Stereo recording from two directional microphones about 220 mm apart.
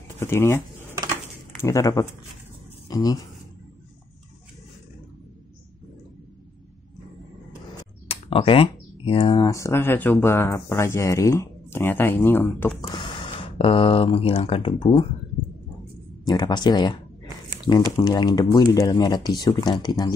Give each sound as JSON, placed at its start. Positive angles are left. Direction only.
{"t": 0.2, "sound": "speech", "side_deg": 10}
{"t": 1.6, "sound": "speech", "side_deg": 15}
{"t": 8.1, "sound": "speech", "side_deg": 25}
{"t": 16.3, "sound": "speech", "side_deg": 20}